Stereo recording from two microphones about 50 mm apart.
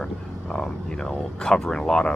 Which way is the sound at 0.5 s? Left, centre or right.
Centre.